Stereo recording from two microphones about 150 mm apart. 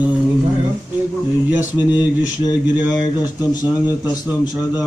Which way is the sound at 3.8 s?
25° left (ahead or behind).